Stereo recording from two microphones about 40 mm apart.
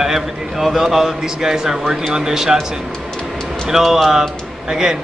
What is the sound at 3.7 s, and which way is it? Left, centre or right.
A man's voice, centre.